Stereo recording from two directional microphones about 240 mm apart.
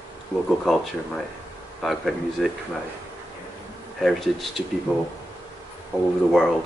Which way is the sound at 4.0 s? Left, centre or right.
Centre.